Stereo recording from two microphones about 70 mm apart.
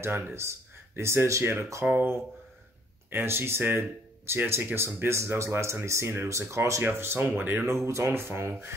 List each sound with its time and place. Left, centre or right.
0.0 s speech: right
3.1 s speech: right
7.6 s speech: right